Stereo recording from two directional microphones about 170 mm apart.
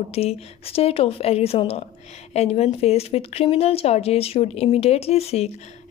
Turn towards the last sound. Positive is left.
turn(degrees=40)  # may be behind; listen again after turning